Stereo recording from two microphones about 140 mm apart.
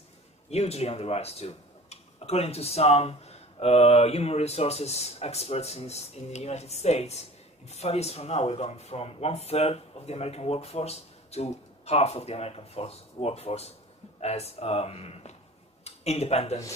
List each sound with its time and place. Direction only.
0.5 s speech: 50° left (ahead or behind)